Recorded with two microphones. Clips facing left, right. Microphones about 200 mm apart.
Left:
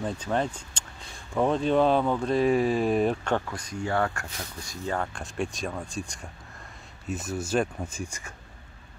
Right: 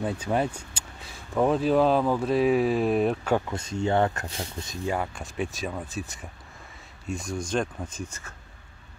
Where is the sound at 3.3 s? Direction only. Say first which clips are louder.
Right 3 dB; 20° right (ahead or behind).